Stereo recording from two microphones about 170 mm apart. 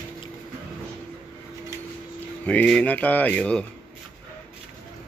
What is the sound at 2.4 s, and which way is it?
Speech, 5° left (ahead or behind).